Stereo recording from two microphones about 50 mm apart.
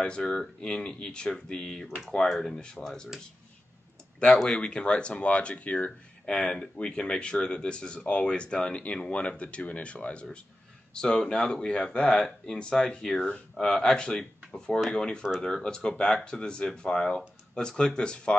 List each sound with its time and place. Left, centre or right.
0.0 s speech: centre
2.0 s speech: centre
4.5 s speech: centre
6.2 s speech: centre